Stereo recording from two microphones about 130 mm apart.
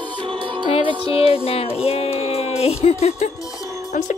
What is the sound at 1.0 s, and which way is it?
Music, 45° left (ahead or behind).